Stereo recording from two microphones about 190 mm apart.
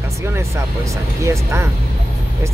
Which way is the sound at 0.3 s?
15° right (ahead or behind).